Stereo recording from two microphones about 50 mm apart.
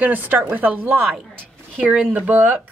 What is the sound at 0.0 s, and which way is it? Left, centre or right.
Speech, right.